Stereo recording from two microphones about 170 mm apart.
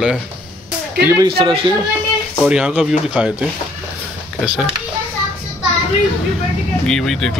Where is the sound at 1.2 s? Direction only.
30° right (ahead or behind).